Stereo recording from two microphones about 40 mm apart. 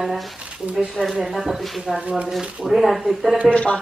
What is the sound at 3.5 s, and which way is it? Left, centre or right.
Speech, left.